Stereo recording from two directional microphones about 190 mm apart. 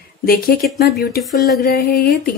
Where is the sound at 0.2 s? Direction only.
50° left (ahead or behind).